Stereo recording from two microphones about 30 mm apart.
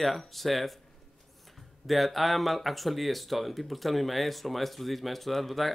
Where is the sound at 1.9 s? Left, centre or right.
Centre.